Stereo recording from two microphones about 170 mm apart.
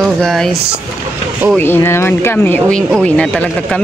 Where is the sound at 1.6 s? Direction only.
15° left (ahead or behind).